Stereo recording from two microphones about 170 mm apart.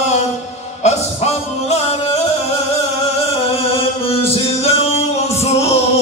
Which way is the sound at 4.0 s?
35° left (ahead or behind).